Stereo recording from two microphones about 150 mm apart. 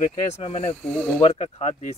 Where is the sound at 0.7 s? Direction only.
10° left (ahead or behind).